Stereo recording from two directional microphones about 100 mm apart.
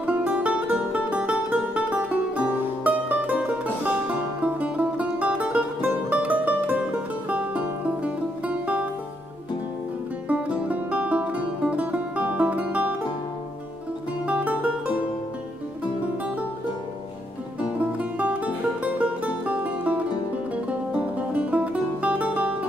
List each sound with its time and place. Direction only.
0.0 s music: 15° right (ahead or behind)
10.2 s music: 15° right (ahead or behind)
14.2 s music: 15° right (ahead or behind)
17.9 s music: 15° right (ahead or behind)